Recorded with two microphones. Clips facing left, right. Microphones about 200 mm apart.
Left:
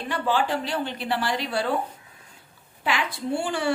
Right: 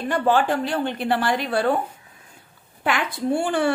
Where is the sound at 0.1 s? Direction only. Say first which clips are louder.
Right 5 dB; 50° right (ahead or behind).